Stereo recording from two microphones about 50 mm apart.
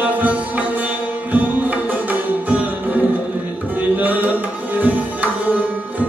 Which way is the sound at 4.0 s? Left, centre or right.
Right.